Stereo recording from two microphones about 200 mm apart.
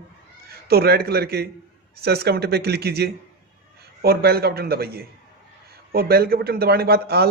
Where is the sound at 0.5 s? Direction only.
50° right (ahead or behind).